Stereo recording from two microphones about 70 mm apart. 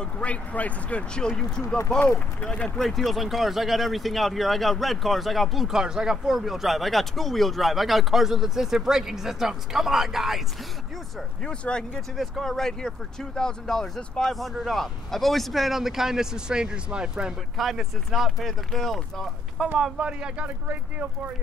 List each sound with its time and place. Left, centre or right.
0.0 s speech: centre
2.0 s speech: left
2.8 s speech: centre
11.4 s speech: centre
12.2 s speech: centre
17.6 s speech: centre
20.0 s speech: centre
20.4 s speech: right